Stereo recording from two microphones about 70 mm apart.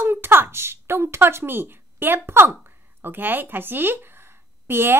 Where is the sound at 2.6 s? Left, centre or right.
Right.